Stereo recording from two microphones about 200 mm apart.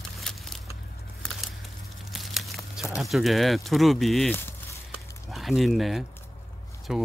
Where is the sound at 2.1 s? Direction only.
Centre (ahead or behind).